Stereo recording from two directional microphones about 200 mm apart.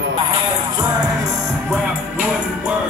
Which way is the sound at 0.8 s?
20° right (ahead or behind).